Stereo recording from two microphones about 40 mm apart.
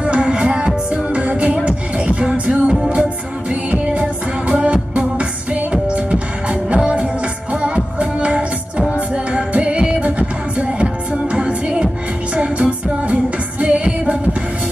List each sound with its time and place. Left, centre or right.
0.0 s music: right